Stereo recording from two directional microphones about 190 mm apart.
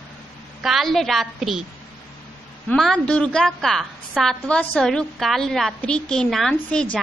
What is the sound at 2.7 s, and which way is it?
A woman's voice, 5° left (ahead or behind).